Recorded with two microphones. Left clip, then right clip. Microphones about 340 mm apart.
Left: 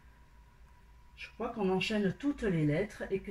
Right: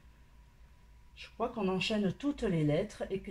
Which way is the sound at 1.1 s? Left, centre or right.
Centre.